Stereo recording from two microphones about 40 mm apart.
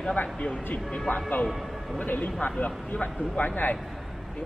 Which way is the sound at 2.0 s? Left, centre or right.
Left.